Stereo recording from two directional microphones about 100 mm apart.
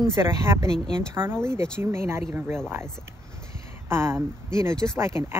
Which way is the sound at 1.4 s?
25° right (ahead or behind).